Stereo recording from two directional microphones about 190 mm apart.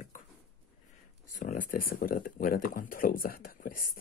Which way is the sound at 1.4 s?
45° left (ahead or behind).